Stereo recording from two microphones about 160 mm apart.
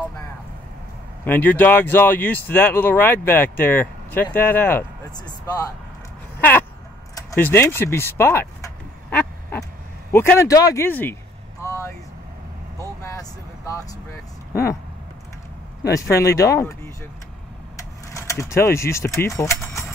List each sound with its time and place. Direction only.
1.2 s speech: 10° left (ahead or behind)
5.1 s speech: 25° left (ahead or behind)
7.2 s speech: 15° left (ahead or behind)
9.1 s quack: 10° left (ahead or behind)
10.1 s speech: 15° left (ahead or behind)
11.6 s vehicle: 20° left (ahead or behind)
13.0 s vehicle: 20° left (ahead or behind)
14.5 s speech: 20° left (ahead or behind)
15.9 s speech: 20° left (ahead or behind)